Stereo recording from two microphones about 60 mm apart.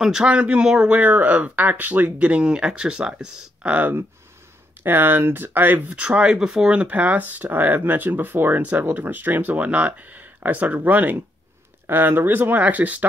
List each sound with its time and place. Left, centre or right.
0.0 s speech: centre
4.8 s speech: right; by 6.7 s centre
6.7 s speech: right